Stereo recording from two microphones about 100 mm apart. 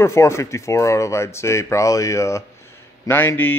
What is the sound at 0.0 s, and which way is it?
Speech, 30° left (ahead or behind).